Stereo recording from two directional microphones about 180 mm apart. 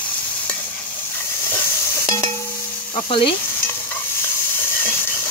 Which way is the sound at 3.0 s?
30° left (ahead or behind).